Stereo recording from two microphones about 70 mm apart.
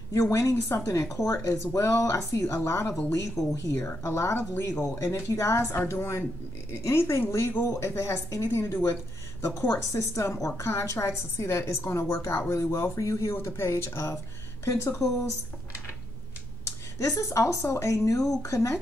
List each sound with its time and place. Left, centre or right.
0.1 s a woman's voice: left
8.5 s a woman's voice: left
16.6 s a woman's voice: left